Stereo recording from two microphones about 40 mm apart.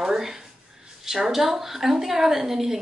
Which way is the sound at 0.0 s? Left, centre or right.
Centre.